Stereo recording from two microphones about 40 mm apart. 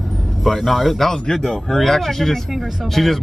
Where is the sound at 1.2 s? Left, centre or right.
Centre.